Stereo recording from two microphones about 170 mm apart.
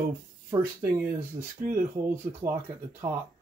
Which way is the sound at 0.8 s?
50° right (ahead or behind).